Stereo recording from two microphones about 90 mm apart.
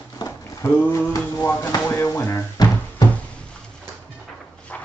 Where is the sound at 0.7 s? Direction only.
25° left (ahead or behind).